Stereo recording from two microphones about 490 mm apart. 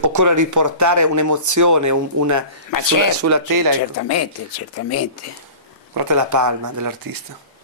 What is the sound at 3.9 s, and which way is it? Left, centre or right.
Speech, left.